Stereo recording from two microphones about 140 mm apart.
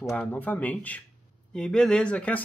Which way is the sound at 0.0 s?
5° left (ahead or behind).